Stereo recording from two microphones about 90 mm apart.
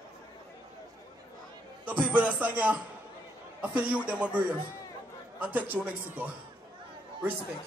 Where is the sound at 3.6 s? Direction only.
15° right (ahead or behind).